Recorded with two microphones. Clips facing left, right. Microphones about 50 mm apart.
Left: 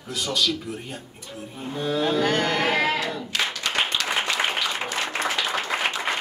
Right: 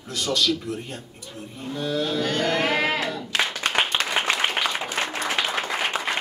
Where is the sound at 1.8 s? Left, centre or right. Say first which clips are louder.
Left 3 dB; left.